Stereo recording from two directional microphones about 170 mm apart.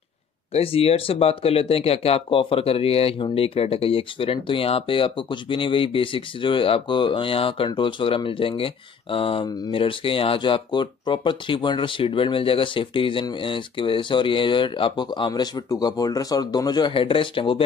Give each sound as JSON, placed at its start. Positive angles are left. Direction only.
{"t": 0.5, "sound": "speech", "side_deg": 35}